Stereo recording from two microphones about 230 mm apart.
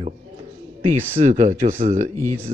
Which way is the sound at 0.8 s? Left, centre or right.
Right.